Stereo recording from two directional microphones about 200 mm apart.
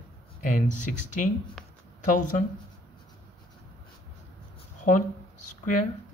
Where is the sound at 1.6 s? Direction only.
5° left (ahead or behind).